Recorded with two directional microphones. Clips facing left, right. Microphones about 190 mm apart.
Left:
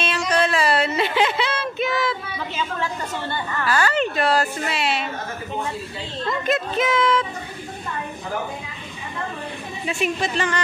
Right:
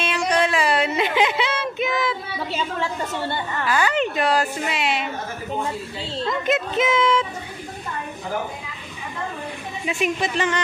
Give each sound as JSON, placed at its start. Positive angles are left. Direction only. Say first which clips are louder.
{"t": 0.3, "sound": "a sound", "louder": "left 1 dB", "side_deg": -15}
{"t": 2.5, "sound": "a woman's voice", "louder": "right 1 dB", "side_deg": -25}
{"t": 6.4, "sound": "speech", "louder": "even", "side_deg": -20}
{"t": 9.8, "sound": "a woman's voice", "louder": "even", "side_deg": -15}